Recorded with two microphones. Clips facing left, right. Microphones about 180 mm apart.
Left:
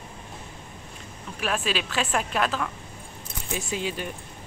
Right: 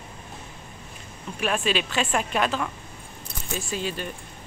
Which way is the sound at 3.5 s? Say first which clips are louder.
Even; 15° left (ahead or behind).